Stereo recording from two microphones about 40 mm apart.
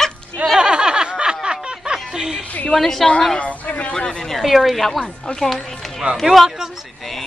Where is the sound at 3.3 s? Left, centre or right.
Left.